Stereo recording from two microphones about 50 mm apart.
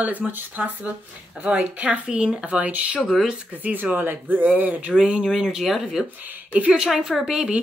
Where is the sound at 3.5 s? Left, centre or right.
Right.